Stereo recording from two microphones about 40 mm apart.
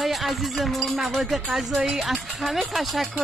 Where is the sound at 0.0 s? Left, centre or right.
Centre.